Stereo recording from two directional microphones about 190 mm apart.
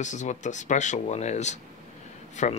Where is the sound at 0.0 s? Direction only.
40° left (ahead or behind).